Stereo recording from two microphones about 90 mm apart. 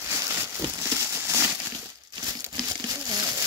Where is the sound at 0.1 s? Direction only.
35° right (ahead or behind).